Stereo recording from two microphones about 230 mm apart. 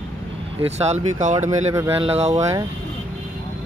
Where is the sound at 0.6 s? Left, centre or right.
Right.